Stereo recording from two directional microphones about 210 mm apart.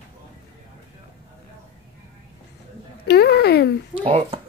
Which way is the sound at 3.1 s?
50° left (ahead or behind).